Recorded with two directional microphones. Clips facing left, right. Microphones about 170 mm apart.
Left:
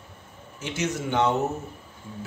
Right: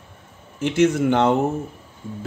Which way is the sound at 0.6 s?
55° right (ahead or behind).